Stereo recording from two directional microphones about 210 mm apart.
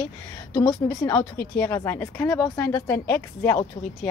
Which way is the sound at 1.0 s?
20° left (ahead or behind).